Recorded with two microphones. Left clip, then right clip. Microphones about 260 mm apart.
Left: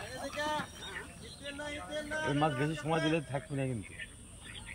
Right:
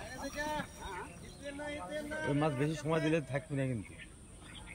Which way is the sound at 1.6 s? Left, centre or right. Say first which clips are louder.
Left 1 dB; centre.